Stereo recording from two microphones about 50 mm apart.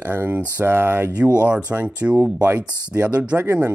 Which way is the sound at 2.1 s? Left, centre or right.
Right.